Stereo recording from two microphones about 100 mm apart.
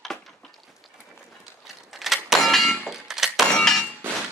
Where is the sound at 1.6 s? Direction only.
Centre (ahead or behind).